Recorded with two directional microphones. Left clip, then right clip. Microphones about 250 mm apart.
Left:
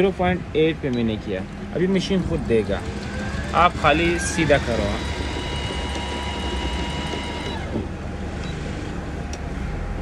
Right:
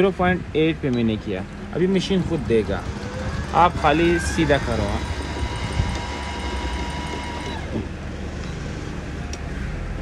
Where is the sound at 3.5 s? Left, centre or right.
Right.